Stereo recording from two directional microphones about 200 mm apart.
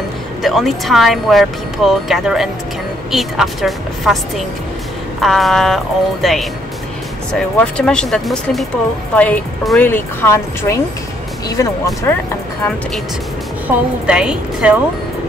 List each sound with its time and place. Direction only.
0.4 s speech: centre (ahead or behind); by 11.9 s 15° left (ahead or behind)
13.7 s speech: 5° right (ahead or behind)